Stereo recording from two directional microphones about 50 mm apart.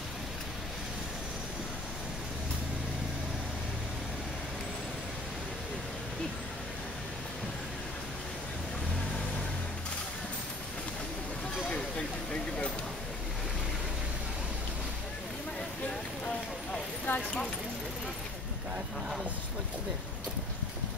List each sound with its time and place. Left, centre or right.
17.0 s clip-clop: left